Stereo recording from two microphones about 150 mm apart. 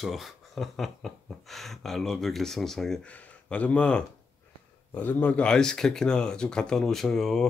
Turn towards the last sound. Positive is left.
turn(degrees=5)  # may be behind; listen again after turning